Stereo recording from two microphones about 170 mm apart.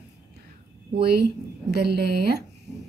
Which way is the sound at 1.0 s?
70° right (ahead or behind).